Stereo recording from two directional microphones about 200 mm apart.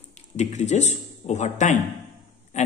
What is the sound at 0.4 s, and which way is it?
A man's voice, 35° left (ahead or behind).